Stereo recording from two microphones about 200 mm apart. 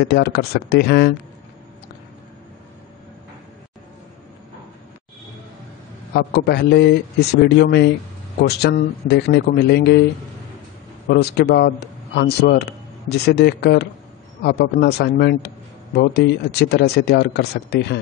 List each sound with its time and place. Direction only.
0.0 s a man's voice: 55° left (ahead or behind)
6.1 s a man's voice: 55° left (ahead or behind)
11.1 s a man's voice: 55° left (ahead or behind)